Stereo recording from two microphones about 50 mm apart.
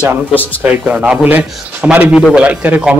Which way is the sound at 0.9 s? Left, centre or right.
Right.